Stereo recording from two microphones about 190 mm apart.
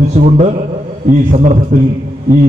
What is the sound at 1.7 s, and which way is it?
Speech, 40° right (ahead or behind).